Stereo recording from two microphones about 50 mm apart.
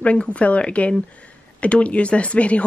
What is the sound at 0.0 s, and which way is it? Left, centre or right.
A woman's voice, left.